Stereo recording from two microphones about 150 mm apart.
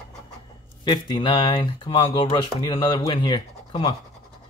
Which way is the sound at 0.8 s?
30° left (ahead or behind).